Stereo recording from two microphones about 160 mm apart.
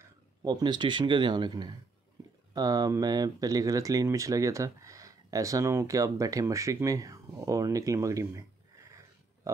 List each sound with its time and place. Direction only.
0.0 s speech: 25° right (ahead or behind)